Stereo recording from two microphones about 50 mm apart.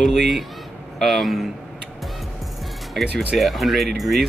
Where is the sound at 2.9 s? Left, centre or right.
Centre.